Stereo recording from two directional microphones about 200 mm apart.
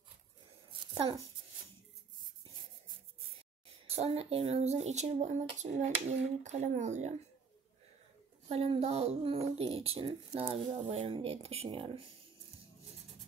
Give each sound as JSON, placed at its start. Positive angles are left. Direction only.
{"t": 0.7, "sound": "a sound", "side_deg": -25}
{"t": 3.8, "sound": "speech", "side_deg": -30}
{"t": 8.5, "sound": "speech", "side_deg": -30}